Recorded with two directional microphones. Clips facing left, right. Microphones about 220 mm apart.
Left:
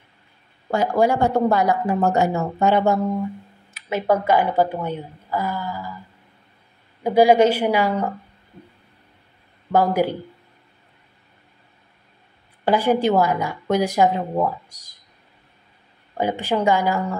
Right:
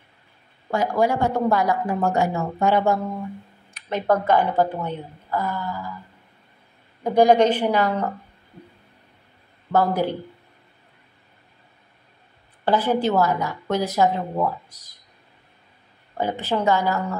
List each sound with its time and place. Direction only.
0.7 s speech: 25° left (ahead or behind)
3.7 s speech: 5° left (ahead or behind)
7.0 s speech: 5° left (ahead or behind)
9.7 s speech: 10° left (ahead or behind)
12.6 s speech: 15° left (ahead or behind)
16.2 s speech: 15° left (ahead or behind)